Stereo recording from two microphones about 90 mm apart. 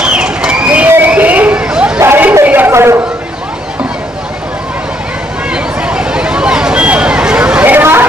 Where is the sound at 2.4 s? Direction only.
20° right (ahead or behind).